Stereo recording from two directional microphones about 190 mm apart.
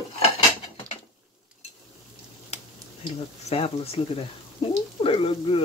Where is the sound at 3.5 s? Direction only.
30° left (ahead or behind).